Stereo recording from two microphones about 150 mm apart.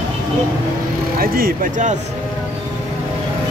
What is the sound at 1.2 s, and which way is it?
Speech, 75° right (ahead or behind).